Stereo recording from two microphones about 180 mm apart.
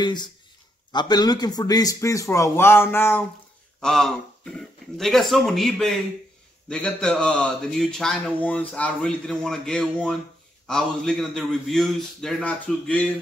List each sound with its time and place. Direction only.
0.0 s speech: 25° left (ahead or behind)
3.8 s speech: centre (ahead or behind)